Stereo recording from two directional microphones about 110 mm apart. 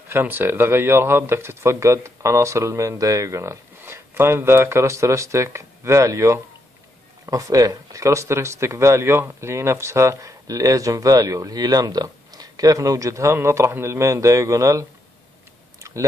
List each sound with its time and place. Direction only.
0.1 s speech: 20° right (ahead or behind)
15.8 s clicking: 30° right (ahead or behind)